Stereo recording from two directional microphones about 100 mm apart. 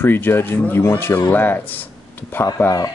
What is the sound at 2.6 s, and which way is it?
Speech, 30° left (ahead or behind).